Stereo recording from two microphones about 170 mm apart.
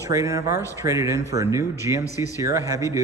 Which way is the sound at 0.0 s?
20° right (ahead or behind).